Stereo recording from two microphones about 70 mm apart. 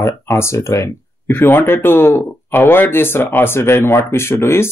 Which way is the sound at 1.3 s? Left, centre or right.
Left.